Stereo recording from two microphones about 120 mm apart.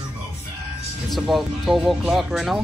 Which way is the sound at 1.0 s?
Centre (ahead or behind).